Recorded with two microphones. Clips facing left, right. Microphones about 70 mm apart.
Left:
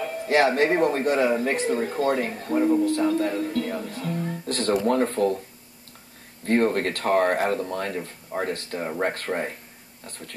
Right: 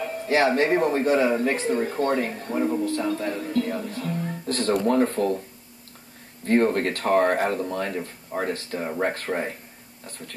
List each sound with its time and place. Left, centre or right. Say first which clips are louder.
0.0 s speech: left 1 dB; centre
6.4 s speech: right 1 dB; centre